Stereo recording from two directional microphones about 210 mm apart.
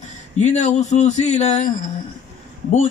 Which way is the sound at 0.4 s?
35° left (ahead or behind).